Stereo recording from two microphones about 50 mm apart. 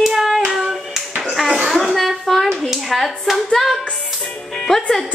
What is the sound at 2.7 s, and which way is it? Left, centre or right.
Clapping, centre.